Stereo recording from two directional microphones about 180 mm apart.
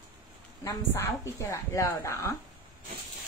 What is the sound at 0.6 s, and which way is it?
A woman's voice, 15° left (ahead or behind).